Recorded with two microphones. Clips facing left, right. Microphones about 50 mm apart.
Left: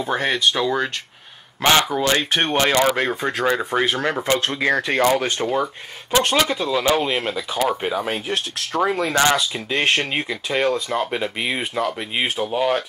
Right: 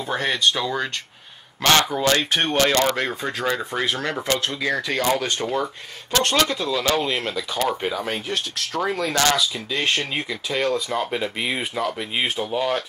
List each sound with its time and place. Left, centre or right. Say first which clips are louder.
0.0 s speech: left 2 dB; centre
4.4 s speech: left 4 dB; left
5.0 s speech: left 3 dB; left
8.3 s speech: left 2 dB; left
10.2 s speech: left 3 dB; centre